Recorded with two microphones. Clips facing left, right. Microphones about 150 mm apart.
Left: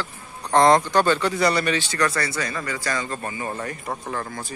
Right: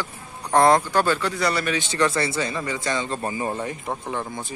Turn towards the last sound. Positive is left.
turn(degrees=-20)  # may be behind; listen again after turning